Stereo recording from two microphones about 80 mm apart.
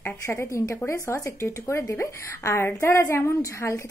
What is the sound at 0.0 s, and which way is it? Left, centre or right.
A woman's voice, left.